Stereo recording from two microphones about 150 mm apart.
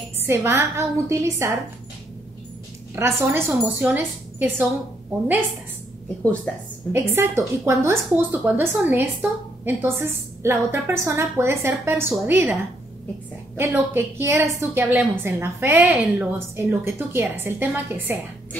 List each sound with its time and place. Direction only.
0.2 s a woman's voice: 15° right (ahead or behind)
3.0 s a woman's voice: 15° right (ahead or behind)
6.2 s a woman's voice: 10° left (ahead or behind)
6.9 s a woman's voice: 15° right (ahead or behind)
13.6 s a woman's voice: 15° right (ahead or behind)